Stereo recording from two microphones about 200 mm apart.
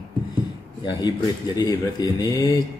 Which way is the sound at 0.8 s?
20° left (ahead or behind).